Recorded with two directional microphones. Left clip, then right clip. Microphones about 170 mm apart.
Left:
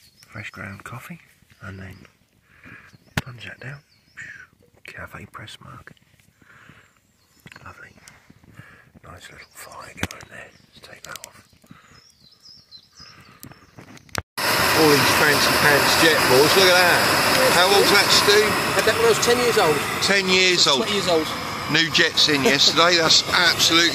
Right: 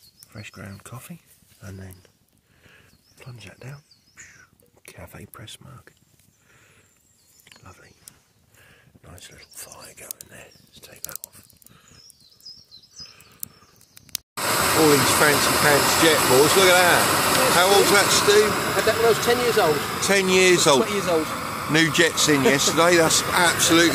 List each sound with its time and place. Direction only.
0.5 s speech: 20° right (ahead or behind)
5.4 s speech: 15° right (ahead or behind)
8.6 s speech: 20° right (ahead or behind)
9.8 s speech: 40° right (ahead or behind)
11.1 s speech: 25° right (ahead or behind)
12.9 s a sound: 45° right (ahead or behind)
13.4 s a sound: 90° right
14.3 s speech: 15° right (ahead or behind)
20.0 s speech: 15° right (ahead or behind)
20.8 s speech: 5° right (ahead or behind)
21.7 s speech: 25° right (ahead or behind)